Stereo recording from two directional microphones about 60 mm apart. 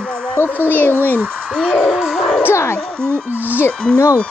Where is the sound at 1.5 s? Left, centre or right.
Centre.